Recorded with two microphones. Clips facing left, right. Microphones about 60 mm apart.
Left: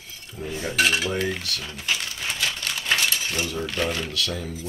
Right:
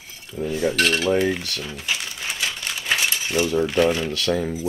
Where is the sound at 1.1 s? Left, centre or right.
Centre.